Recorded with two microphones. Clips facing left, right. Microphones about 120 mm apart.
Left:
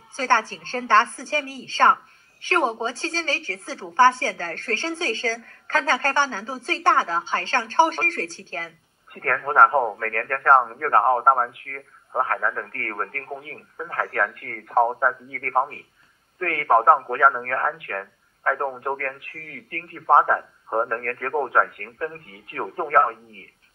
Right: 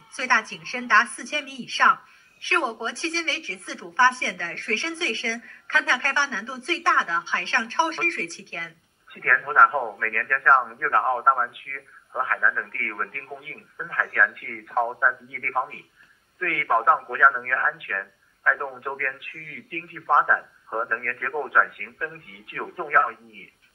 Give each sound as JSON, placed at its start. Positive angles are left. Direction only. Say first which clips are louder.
{"t": 0.1, "sound": "a woman's voice", "louder": "left 4 dB", "side_deg": 40}